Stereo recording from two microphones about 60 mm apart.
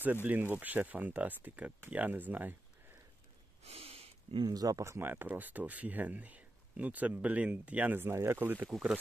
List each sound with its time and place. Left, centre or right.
0.0 s speech: right
4.5 s speech: right
4.8 s speech: right
8.0 s speech: right